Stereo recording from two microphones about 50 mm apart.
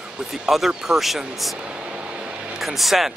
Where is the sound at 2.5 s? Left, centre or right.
Centre.